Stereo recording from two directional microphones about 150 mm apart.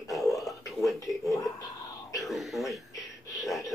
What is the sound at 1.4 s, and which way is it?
Speech, 25° left (ahead or behind).